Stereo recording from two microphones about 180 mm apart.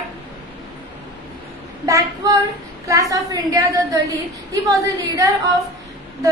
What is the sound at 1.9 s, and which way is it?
Child singing, 15° right (ahead or behind).